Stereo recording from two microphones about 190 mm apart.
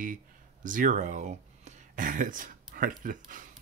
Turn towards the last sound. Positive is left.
turn(degrees=-45)  # may be behind; listen again after turning